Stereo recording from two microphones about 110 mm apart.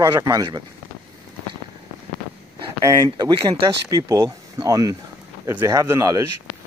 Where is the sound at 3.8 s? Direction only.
30° right (ahead or behind).